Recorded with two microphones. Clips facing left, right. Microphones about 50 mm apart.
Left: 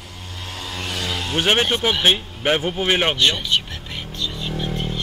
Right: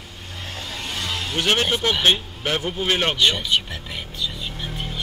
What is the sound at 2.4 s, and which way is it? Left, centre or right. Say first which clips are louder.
Speech: left 4 dB; left.